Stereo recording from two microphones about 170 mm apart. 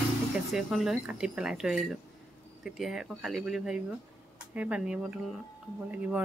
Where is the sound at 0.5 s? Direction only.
Centre (ahead or behind).